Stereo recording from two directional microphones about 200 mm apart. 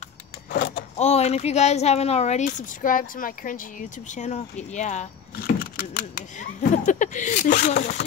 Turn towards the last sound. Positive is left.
turn(degrees=35)  # may be behind; listen again after turning